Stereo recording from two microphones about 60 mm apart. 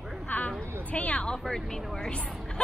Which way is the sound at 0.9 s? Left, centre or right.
Left.